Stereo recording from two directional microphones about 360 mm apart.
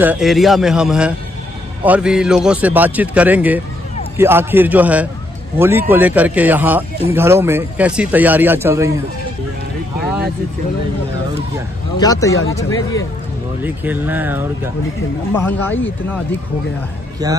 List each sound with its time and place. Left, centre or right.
0.0 s a man's voice: centre
12.0 s speech: centre
12.6 s speech: left
13.6 s a man's voice: centre
15.3 s a man's voice: centre
17.2 s speech: centre